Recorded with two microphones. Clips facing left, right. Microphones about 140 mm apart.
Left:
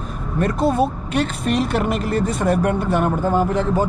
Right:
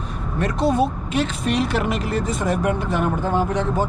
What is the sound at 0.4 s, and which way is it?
Speech, centre (ahead or behind).